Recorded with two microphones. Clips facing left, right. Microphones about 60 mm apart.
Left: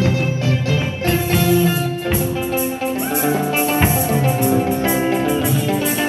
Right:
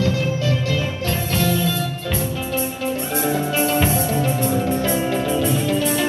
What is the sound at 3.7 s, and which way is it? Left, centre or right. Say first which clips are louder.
Music: left 2 dB; left.